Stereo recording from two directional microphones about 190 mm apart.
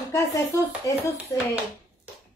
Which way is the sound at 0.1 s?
15° left (ahead or behind).